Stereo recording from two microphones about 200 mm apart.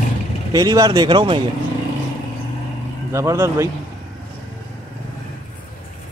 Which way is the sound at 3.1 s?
15° right (ahead or behind).